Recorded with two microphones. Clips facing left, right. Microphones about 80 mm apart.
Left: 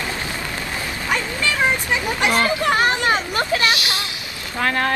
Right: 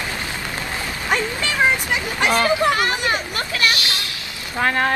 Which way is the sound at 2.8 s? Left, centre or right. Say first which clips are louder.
Left 3 dB; left.